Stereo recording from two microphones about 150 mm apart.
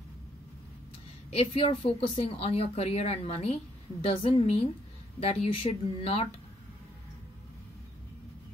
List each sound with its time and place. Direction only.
1.3 s speech: 40° left (ahead or behind)